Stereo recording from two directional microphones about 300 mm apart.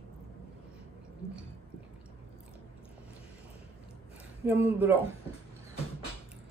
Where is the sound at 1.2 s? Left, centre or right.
Centre.